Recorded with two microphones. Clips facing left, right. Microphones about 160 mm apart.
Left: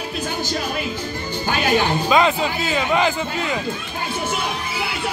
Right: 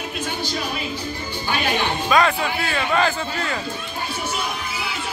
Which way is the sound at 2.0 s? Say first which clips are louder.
Right 2 dB; 20° left (ahead or behind).